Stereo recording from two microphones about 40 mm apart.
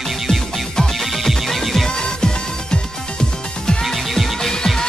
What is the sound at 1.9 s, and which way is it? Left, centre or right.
Music, centre.